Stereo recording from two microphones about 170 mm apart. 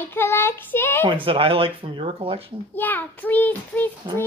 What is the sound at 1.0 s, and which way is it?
Speech, 30° right (ahead or behind).